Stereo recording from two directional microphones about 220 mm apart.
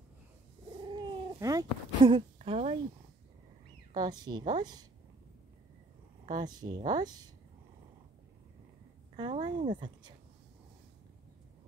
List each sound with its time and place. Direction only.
0.9 s speech: 15° right (ahead or behind)
3.9 s a woman's voice: 20° right (ahead or behind)
6.3 s a woman's voice: 20° right (ahead or behind)
9.1 s a woman's voice: 20° right (ahead or behind)